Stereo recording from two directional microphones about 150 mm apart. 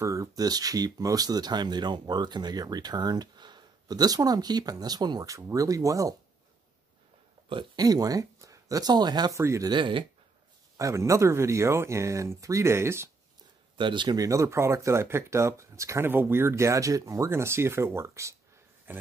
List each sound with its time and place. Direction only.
0.0 s speech: 20° right (ahead or behind)
7.4 s speech: 30° right (ahead or behind)
10.8 s speech: 20° right (ahead or behind)
13.7 s a man's voice: 30° right (ahead or behind); by 19.0 s 15° right (ahead or behind)